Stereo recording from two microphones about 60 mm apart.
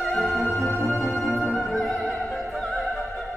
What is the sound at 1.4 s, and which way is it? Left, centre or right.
Music, centre.